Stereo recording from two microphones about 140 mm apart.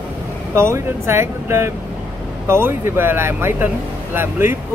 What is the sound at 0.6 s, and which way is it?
Speech, 20° right (ahead or behind).